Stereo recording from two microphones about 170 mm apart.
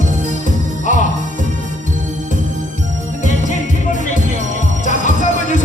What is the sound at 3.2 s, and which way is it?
Jingle bell, 50° left (ahead or behind).